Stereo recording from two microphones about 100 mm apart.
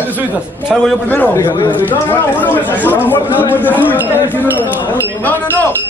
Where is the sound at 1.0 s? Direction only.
20° left (ahead or behind).